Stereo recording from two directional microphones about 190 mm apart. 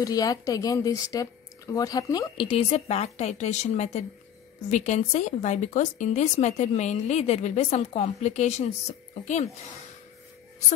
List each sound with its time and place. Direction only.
0.0 s speech: 20° left (ahead or behind); by 9.5 s 35° left (ahead or behind)